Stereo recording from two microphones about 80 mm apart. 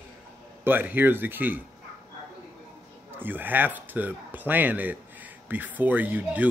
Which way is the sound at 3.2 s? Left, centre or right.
Right.